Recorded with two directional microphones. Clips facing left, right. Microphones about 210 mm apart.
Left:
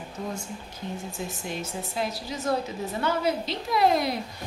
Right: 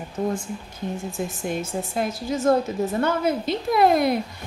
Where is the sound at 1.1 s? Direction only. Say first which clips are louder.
Right 6 dB; 50° right (ahead or behind).